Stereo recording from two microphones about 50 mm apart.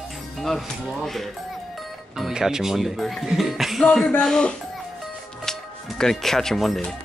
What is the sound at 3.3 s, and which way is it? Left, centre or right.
Music, centre.